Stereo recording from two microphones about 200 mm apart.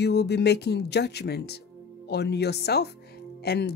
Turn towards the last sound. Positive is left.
turn(degrees=55)  # may be behind; listen again after turning